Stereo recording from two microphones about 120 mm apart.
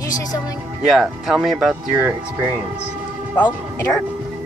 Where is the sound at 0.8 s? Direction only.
5° right (ahead or behind).